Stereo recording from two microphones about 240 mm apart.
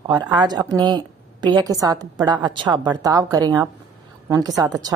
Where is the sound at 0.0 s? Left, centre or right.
Centre.